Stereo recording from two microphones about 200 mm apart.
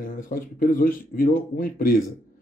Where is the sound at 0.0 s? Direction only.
45° left (ahead or behind).